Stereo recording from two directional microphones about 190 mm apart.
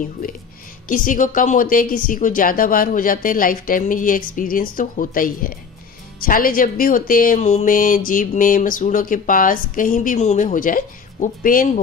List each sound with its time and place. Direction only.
0.8 s speech: 45° left (ahead or behind)